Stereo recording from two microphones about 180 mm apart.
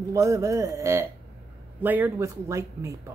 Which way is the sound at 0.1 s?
15° right (ahead or behind).